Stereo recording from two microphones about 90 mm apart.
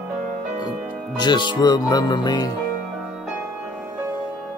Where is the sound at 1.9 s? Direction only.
50° left (ahead or behind).